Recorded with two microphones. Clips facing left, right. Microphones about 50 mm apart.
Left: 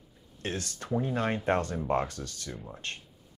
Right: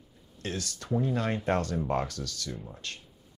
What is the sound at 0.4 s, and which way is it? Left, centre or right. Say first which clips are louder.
Speech: left 1 dB; left.